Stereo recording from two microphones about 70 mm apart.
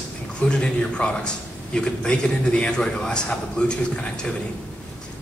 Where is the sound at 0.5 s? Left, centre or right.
Centre.